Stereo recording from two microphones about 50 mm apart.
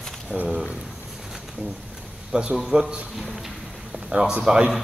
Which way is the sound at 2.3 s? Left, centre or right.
Centre.